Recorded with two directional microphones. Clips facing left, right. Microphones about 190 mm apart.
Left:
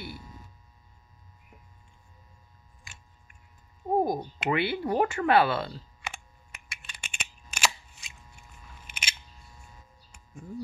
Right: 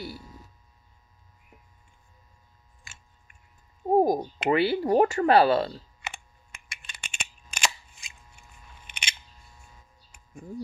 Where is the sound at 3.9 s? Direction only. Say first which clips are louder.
Right 5 dB; 35° right (ahead or behind).